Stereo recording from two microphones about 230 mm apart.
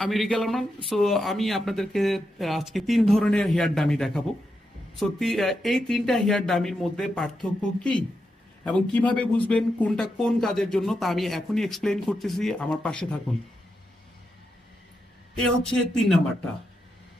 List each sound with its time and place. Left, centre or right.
0.0 s speech: centre
8.6 s speech: centre
15.3 s speech: centre